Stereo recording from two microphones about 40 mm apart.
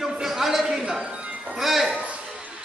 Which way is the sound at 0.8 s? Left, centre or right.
Right.